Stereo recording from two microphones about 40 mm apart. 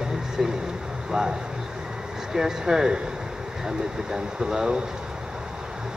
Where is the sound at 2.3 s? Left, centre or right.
Centre.